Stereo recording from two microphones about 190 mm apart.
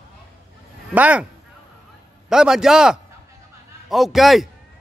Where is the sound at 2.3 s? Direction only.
5° right (ahead or behind).